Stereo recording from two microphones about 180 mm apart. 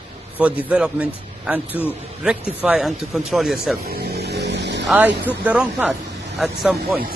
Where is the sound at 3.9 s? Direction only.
60° right (ahead or behind).